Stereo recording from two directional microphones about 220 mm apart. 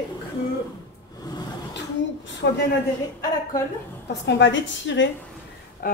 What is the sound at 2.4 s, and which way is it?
Speech, 50° left (ahead or behind).